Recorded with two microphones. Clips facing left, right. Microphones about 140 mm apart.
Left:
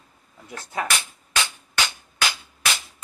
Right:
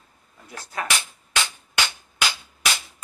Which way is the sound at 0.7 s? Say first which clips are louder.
Left 2 dB; 25° left (ahead or behind).